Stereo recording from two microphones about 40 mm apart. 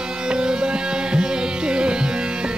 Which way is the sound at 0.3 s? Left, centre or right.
Centre.